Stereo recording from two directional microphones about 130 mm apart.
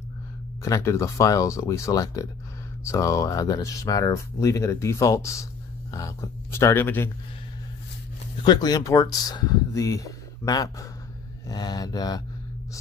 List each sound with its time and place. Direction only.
0.6 s speech: 20° left (ahead or behind)
8.5 s speech: 30° left (ahead or behind)